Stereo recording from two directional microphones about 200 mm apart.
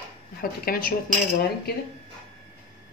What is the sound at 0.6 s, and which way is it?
Speech, 45° left (ahead or behind).